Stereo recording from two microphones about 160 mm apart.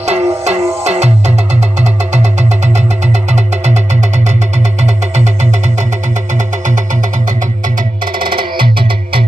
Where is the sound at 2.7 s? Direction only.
45° right (ahead or behind).